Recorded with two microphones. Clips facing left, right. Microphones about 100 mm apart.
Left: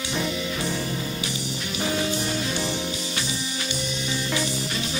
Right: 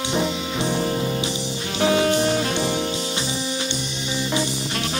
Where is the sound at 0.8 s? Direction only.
50° right (ahead or behind).